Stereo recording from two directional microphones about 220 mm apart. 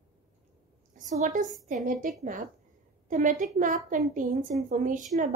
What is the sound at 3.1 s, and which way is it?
A woman's voice, 35° right (ahead or behind).